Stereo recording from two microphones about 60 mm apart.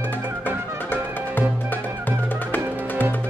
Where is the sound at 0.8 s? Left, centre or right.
Left.